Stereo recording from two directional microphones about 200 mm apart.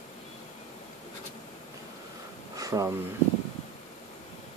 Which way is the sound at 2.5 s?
15° right (ahead or behind).